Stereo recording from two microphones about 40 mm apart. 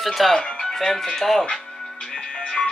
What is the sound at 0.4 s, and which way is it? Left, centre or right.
Music, centre.